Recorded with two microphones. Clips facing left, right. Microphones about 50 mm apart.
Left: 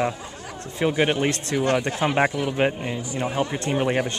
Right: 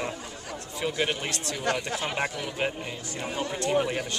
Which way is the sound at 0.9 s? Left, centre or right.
Left.